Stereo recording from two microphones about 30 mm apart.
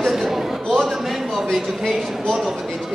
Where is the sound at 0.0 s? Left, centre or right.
Centre.